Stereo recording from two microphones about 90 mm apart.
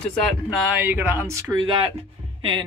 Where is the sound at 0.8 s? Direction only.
20° right (ahead or behind).